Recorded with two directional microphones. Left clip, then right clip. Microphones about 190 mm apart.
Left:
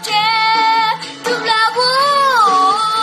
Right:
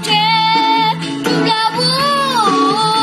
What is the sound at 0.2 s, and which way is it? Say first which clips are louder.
Music: left 2 dB; 15° left (ahead or behind).